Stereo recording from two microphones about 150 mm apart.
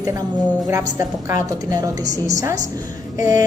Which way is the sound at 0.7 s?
20° right (ahead or behind).